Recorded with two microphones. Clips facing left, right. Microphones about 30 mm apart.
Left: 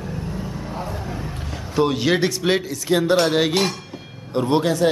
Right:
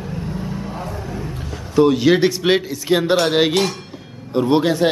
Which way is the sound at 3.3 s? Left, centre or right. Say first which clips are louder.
Right 3 dB; right.